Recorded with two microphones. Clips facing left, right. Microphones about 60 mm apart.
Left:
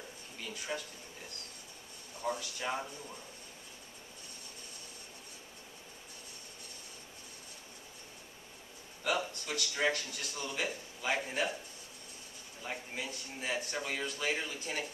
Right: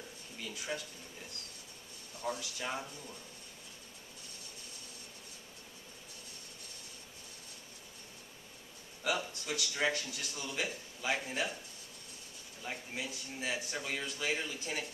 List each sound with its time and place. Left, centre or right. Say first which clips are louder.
0.4 s speech: left 1 dB; centre
2.2 s a man's voice: left 2 dB; centre
9.3 s a man's voice: even; centre
12.6 s a man's voice: left 1 dB; centre